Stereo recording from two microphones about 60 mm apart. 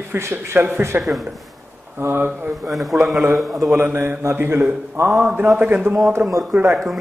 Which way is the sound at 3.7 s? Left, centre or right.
Right.